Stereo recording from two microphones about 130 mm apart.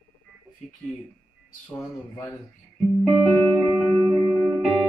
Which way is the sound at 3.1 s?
10° right (ahead or behind).